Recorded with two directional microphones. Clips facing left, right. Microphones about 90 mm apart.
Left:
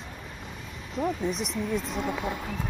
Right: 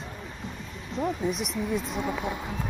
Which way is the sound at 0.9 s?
Centre (ahead or behind).